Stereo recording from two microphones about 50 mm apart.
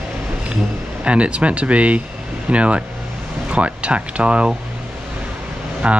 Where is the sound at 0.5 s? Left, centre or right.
Right.